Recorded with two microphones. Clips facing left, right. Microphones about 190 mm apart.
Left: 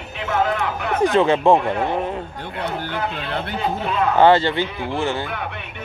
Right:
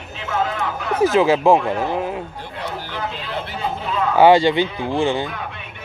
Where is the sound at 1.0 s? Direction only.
5° right (ahead or behind).